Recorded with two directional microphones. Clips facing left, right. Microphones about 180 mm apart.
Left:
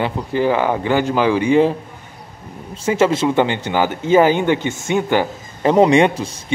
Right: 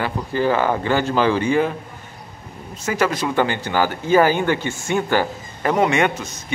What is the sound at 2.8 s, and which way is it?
Speech, 25° left (ahead or behind).